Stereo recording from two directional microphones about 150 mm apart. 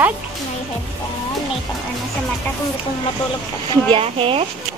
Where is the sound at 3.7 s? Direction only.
35° right (ahead or behind).